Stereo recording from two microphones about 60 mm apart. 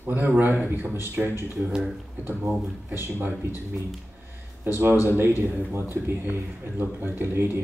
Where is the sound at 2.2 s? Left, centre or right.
Right.